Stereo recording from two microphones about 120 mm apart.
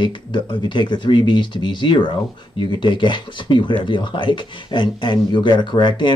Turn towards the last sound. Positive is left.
turn(degrees=40)  # may be behind; listen again after turning